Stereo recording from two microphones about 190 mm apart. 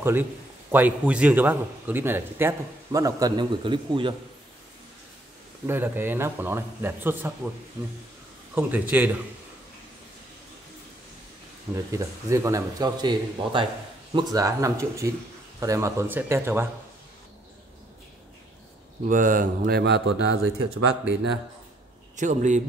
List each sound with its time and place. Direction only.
0.0 s a man's voice: 10° right (ahead or behind); by 4.1 s 25° right (ahead or behind)
5.7 s a man's voice: 10° right (ahead or behind)
8.5 s a man's voice: 10° right (ahead or behind)
11.7 s a man's voice: 15° right (ahead or behind)
19.0 s speech: 45° right (ahead or behind); by 20.3 s 70° right (ahead or behind)
22.1 s speech: 40° right (ahead or behind)